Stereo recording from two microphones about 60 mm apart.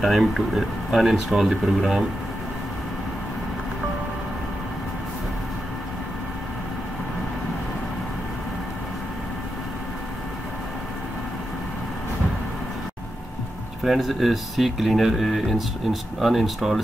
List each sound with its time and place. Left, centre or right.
0.0 s speech: centre
13.8 s speech: centre